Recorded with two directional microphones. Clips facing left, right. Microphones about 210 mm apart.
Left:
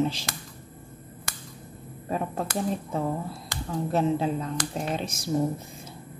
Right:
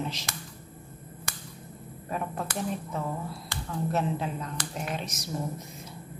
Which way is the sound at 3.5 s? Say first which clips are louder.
Left 3 dB; 30° left (ahead or behind).